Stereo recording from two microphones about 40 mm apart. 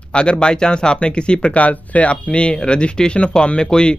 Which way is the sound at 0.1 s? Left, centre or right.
Left.